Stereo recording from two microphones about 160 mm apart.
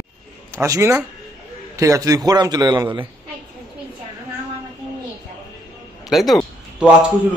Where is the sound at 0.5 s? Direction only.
20° right (ahead or behind).